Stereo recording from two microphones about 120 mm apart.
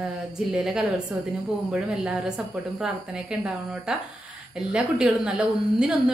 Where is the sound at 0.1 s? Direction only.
5° right (ahead or behind).